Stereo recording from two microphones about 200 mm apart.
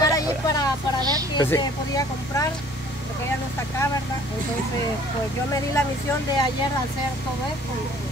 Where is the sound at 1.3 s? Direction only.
15° left (ahead or behind).